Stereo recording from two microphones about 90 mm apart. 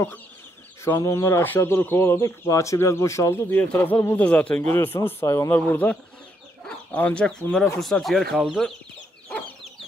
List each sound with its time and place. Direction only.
0.8 s speech: 35° left (ahead or behind)
3.4 s speech: 20° left (ahead or behind)
4.7 s speech: 25° left (ahead or behind)
5.5 s speech: 20° left (ahead or behind); by 8.4 s centre (ahead or behind)